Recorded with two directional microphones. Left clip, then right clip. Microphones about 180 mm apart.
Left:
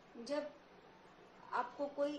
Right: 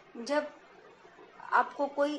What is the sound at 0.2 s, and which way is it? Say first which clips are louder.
Speech: right 10 dB; 40° right (ahead or behind).